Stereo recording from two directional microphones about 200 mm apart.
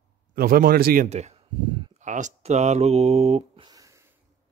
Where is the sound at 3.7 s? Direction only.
15° right (ahead or behind).